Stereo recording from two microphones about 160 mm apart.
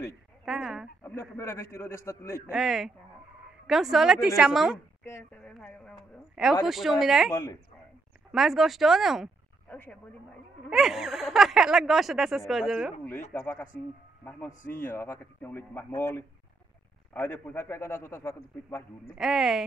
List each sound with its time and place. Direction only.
0.5 s speech: 5° right (ahead or behind)
1.0 s speech: 15° left (ahead or behind)
2.5 s speech: centre (ahead or behind)
5.0 s speech: 10° left (ahead or behind)
9.7 s speech: 10° left (ahead or behind)
10.7 s speech: centre (ahead or behind)
13.3 s speech: 15° left (ahead or behind)
19.1 s speech: centre (ahead or behind)